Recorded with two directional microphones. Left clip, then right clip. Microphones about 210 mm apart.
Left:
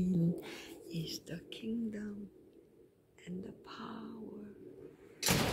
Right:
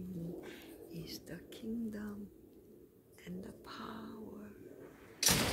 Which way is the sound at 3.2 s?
5° left (ahead or behind).